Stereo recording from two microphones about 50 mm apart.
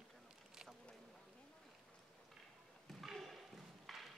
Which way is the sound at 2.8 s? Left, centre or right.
Centre.